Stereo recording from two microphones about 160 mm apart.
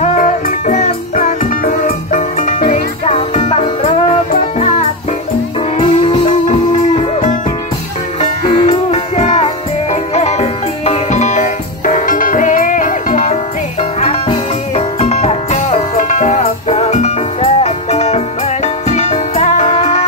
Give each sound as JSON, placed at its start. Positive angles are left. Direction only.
{"t": 0.0, "sound": "music", "side_deg": 55}
{"t": 1.4, "sound": "music", "side_deg": 60}
{"t": 5.8, "sound": "music", "side_deg": 35}
{"t": 7.0, "sound": "music", "side_deg": 50}
{"t": 14.8, "sound": "music", "side_deg": 40}